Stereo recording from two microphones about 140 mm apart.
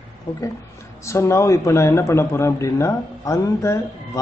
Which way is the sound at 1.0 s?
20° left (ahead or behind).